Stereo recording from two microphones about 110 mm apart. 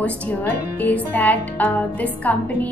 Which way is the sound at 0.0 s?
15° left (ahead or behind).